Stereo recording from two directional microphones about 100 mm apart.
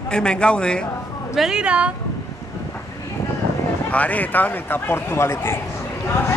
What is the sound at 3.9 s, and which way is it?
Speech, 15° left (ahead or behind).